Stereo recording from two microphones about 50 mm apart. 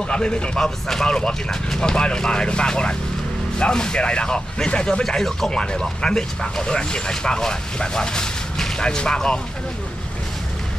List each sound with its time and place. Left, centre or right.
0.1 s speech: centre
5.0 s speech: centre